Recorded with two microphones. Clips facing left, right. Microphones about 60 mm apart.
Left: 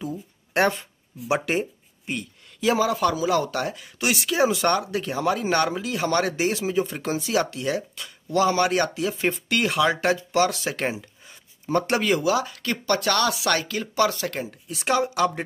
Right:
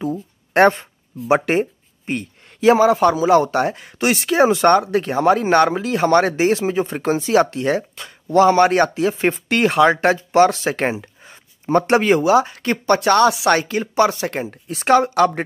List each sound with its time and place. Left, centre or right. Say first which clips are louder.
0.1 s a sound: right 7 dB; right
1.3 s speech: right 7 dB; right
14.7 s speech: right 8 dB; right